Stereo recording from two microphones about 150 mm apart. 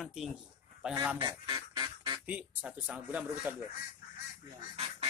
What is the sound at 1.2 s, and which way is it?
Duck, 30° right (ahead or behind).